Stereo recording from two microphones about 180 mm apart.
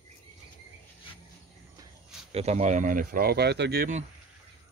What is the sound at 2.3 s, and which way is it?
Speech, 40° right (ahead or behind).